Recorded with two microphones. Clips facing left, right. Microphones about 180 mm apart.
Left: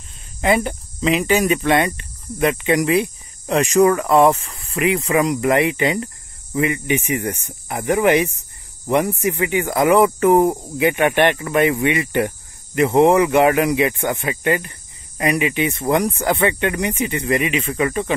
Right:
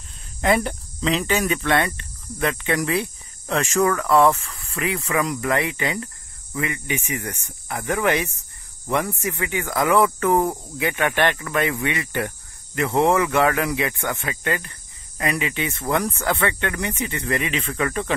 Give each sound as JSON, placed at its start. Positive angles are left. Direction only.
{"t": 0.4, "sound": "speech", "side_deg": 5}